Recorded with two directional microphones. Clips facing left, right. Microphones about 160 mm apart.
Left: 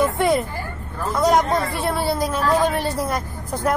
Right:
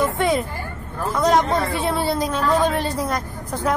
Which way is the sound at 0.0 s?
10° left (ahead or behind).